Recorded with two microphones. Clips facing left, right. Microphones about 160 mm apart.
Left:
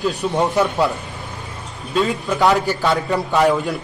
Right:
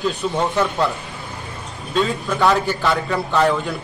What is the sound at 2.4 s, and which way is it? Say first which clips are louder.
A man's voice: left 1 dB; 15° left (ahead or behind).